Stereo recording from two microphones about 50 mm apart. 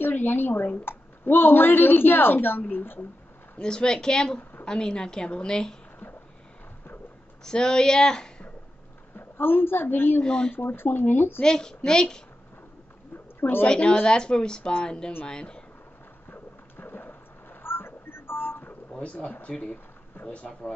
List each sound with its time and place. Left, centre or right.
0.0 s a woman's voice: left
3.6 s a woman's voice: centre
4.4 s a sound: left
4.6 s a woman's voice: centre
7.4 s speech: centre
9.1 s a woman's voice: left
10.2 s a woman's voice: centre
10.5 s a woman's voice: left
11.4 s a woman's voice: centre
13.4 s a woman's voice: left
13.7 s a woman's voice: centre
16.3 s a sound: left
18.9 s speech: left